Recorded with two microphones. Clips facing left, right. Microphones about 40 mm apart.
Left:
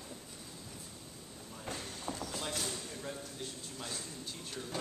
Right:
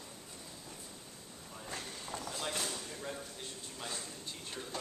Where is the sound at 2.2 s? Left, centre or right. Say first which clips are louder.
Right 2 dB; centre.